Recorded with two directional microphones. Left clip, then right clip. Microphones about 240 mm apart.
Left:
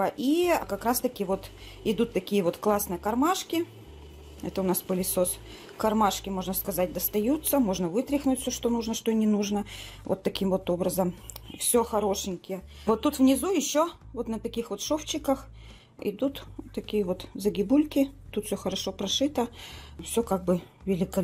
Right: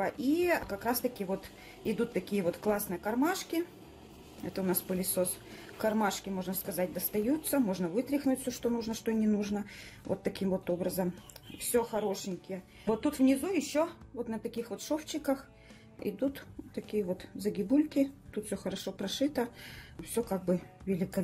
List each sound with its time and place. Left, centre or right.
0.0 s speech: left